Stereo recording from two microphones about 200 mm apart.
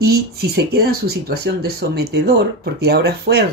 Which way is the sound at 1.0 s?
50° right (ahead or behind).